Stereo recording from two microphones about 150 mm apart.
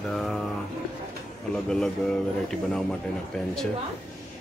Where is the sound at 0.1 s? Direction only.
Centre (ahead or behind).